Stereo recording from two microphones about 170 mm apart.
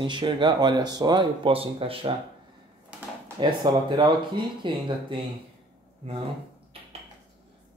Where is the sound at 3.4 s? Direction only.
25° right (ahead or behind).